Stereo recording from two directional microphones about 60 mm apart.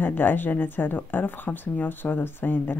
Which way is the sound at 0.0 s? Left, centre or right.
Left.